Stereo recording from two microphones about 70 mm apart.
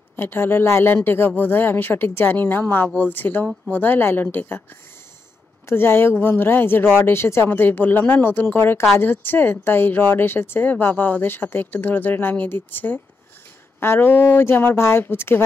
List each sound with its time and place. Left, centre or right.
0.1 s speech: left
5.7 s speech: left